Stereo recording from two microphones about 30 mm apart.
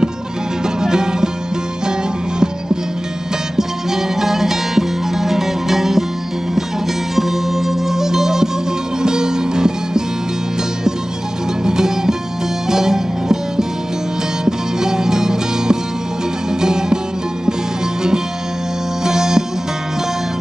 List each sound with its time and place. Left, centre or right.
0.7 s music: right
3.5 s music: centre
7.2 s music: centre
11.6 s music: centre
19.0 s music: centre